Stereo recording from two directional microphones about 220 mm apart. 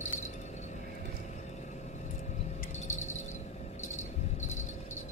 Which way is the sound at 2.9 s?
30° left (ahead or behind).